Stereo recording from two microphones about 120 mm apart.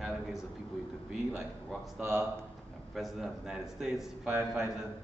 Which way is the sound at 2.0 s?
20° right (ahead or behind).